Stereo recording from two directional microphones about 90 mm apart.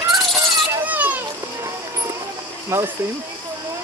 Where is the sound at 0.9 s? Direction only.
20° right (ahead or behind).